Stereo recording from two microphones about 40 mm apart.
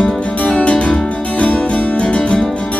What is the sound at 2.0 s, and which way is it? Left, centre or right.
Music, left.